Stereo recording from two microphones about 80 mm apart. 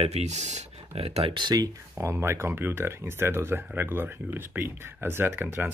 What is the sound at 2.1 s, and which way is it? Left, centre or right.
Speech, right.